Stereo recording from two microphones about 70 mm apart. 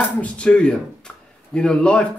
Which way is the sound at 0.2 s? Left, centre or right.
Centre.